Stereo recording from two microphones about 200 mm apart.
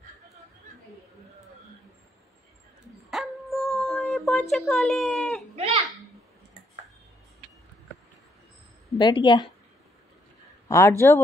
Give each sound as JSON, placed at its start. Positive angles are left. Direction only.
{"t": 3.1, "sound": "dog", "side_deg": 0}
{"t": 8.9, "sound": "speech", "side_deg": 20}
{"t": 10.7, "sound": "speech", "side_deg": 15}